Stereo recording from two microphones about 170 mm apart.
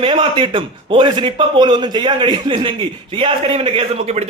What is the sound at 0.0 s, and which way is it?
A man's voice, 30° right (ahead or behind).